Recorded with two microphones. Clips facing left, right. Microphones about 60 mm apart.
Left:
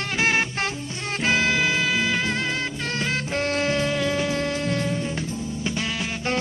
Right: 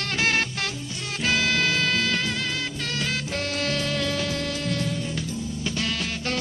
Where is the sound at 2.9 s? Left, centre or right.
Left.